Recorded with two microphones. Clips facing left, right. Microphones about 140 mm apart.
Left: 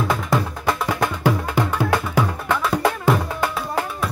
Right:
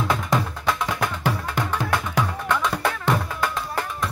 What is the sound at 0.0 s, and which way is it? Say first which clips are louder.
Music: left 2 dB; centre (ahead or behind).